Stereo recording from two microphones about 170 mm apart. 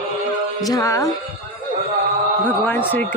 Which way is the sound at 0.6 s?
20° left (ahead or behind).